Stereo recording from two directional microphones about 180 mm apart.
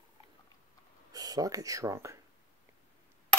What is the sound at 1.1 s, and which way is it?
Speech, 20° right (ahead or behind).